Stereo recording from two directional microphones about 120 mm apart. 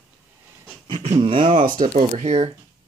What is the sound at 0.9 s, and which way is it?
Speech, 40° right (ahead or behind).